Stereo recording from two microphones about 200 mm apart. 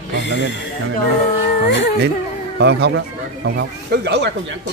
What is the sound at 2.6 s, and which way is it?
A man's voice, 60° right (ahead or behind).